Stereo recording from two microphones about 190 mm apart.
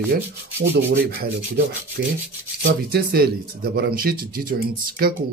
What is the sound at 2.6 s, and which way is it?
Speech, 55° right (ahead or behind).